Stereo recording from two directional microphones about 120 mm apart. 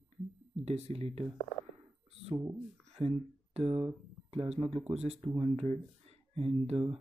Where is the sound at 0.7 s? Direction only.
60° right (ahead or behind).